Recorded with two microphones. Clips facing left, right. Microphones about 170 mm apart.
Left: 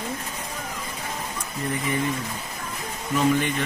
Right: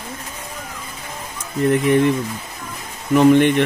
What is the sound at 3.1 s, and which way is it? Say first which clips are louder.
Speech: right 10 dB; 65° right (ahead or behind).